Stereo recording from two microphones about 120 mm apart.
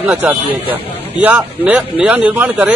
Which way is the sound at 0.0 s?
15° right (ahead or behind).